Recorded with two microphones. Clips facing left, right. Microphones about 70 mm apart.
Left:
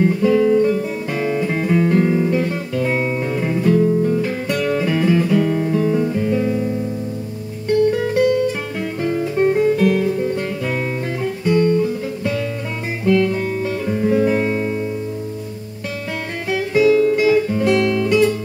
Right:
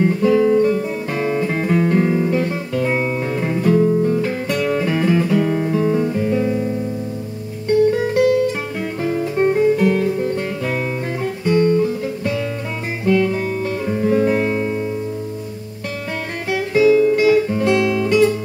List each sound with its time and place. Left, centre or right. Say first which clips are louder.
0.0 s guitar: even; centre
7.9 s music: right 1 dB; centre
11.4 s guitar: right 1 dB; centre
11.8 s music: right 1 dB; centre
16.4 s music: right 1 dB; centre